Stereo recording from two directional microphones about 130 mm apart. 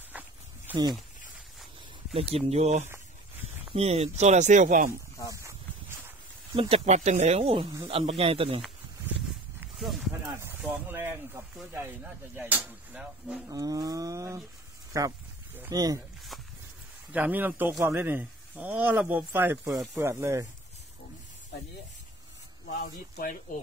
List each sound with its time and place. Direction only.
0.1 s snake: 10° right (ahead or behind)
0.7 s speech: 15° right (ahead or behind)
2.1 s speech: 50° right (ahead or behind); by 4.9 s 75° right (ahead or behind)
5.3 s a sound: 20° right (ahead or behind)
6.5 s speech: 45° right (ahead or behind)
9.8 s snake: centre (ahead or behind)
10.6 s speech: 15° right (ahead or behind)
13.5 s roaring cats: 25° right (ahead or behind)
14.9 s speech: 25° right (ahead or behind)
15.7 s roaring cats: 30° right (ahead or behind)
17.1 s speech: 15° right (ahead or behind)